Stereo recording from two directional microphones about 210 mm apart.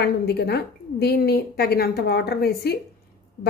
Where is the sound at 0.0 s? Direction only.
50° left (ahead or behind).